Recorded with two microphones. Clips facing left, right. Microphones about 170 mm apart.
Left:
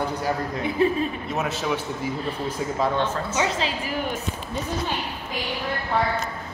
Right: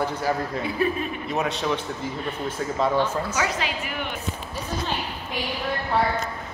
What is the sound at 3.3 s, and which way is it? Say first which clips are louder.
Speech: left 2 dB; 25° left (ahead or behind).